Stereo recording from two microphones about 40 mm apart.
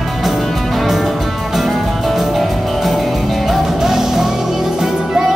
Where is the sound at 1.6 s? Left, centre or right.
Centre.